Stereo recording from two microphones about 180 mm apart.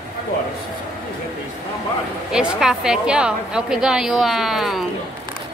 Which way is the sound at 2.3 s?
5° right (ahead or behind).